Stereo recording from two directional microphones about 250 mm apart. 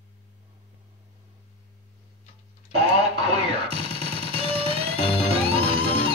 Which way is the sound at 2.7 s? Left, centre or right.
Right.